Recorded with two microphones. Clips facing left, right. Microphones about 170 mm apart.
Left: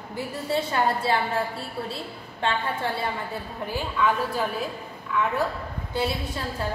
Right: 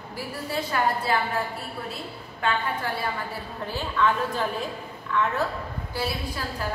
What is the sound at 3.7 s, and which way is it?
A woman's voice, 10° left (ahead or behind).